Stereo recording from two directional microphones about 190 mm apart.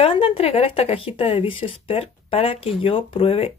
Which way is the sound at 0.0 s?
30° left (ahead or behind).